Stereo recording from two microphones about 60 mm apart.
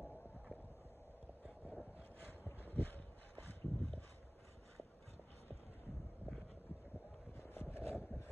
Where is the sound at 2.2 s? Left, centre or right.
Left.